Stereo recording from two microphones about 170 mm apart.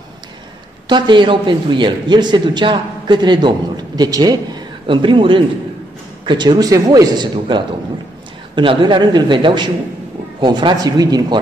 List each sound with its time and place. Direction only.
0.8 s a man's voice: 25° right (ahead or behind)